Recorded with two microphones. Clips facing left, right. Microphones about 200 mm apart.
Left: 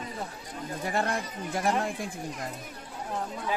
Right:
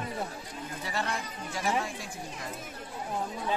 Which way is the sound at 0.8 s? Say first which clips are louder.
Left 5 dB; 50° left (ahead or behind).